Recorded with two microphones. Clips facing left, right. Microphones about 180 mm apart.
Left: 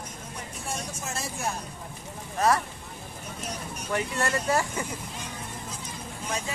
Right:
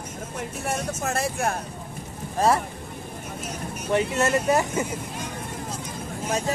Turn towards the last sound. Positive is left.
turn(degrees=-40)  # may be behind; listen again after turning